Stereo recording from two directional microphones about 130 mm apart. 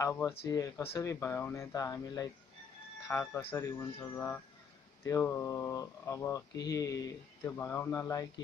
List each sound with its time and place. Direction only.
0.0 s speech: 15° left (ahead or behind)